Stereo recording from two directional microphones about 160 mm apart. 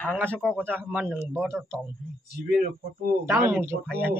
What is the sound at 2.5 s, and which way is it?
Speech, 60° right (ahead or behind).